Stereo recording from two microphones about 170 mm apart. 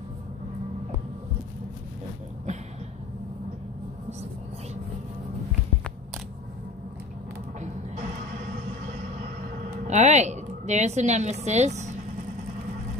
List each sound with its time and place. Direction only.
9.8 s a woman's voice: 45° right (ahead or behind)